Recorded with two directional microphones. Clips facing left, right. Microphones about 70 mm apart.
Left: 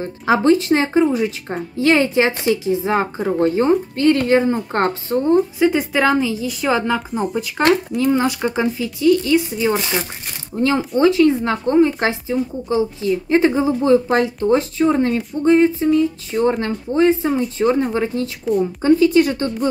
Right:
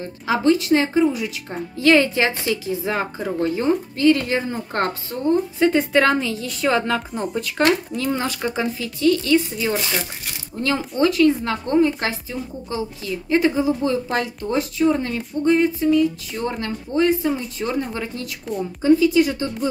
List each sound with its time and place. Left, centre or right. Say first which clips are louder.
0.0 s a woman's voice: left 3 dB; left
5.6 s a woman's voice: left 1 dB; centre; by 18.3 s left
18.8 s speech: left 1 dB; left